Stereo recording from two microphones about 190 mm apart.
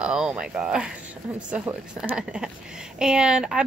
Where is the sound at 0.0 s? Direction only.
5° right (ahead or behind).